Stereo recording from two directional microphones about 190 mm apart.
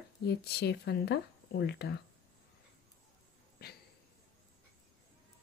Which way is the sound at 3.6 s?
55° left (ahead or behind).